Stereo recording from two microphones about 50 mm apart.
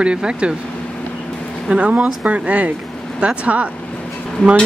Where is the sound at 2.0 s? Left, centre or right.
Right.